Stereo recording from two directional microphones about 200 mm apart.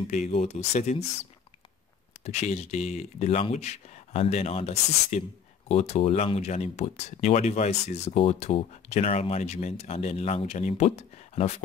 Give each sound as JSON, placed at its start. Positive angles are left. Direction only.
{"t": 0.1, "sound": "speech", "side_deg": 35}
{"t": 2.2, "sound": "speech", "side_deg": 35}